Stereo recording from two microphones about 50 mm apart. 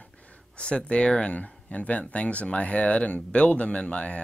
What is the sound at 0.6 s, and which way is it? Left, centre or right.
Speech, left.